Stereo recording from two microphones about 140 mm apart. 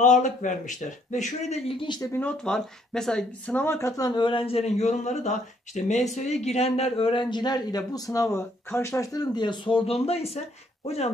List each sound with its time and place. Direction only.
0.0 s speech: 65° left (ahead or behind); by 2.0 s 35° left (ahead or behind)
2.1 s speech: 5° left (ahead or behind); by 10.4 s 45° left (ahead or behind)